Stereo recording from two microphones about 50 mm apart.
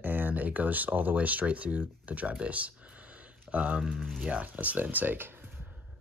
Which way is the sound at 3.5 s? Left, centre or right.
Right.